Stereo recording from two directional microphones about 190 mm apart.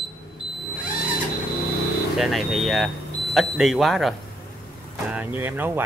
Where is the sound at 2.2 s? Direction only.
Centre (ahead or behind).